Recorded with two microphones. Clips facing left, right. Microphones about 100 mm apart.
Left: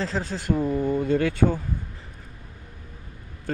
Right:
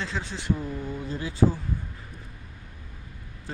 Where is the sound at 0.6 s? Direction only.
60° left (ahead or behind).